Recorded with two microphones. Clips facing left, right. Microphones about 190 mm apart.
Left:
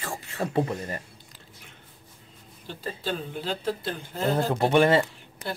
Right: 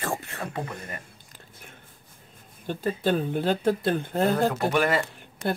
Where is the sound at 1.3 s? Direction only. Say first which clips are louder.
Right 2 dB; 50° right (ahead or behind).